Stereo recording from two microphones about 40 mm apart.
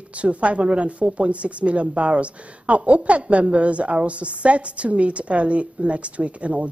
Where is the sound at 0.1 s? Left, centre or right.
Right.